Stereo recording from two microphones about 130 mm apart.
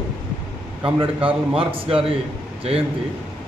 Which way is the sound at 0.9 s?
45° right (ahead or behind).